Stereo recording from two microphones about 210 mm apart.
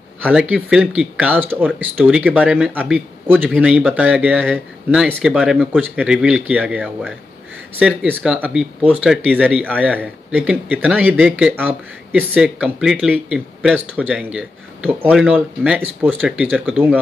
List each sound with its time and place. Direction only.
0.2 s speech: 5° right (ahead or behind)